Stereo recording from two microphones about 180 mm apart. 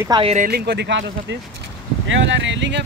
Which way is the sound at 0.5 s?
60° right (ahead or behind).